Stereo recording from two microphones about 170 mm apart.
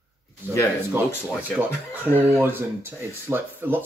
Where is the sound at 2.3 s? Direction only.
15° right (ahead or behind).